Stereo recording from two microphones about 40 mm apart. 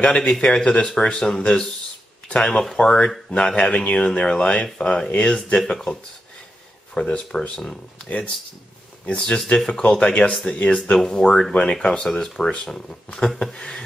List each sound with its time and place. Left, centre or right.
0.0 s speech: left
5.1 s speech: left
7.1 s speech: left
11.0 s speech: centre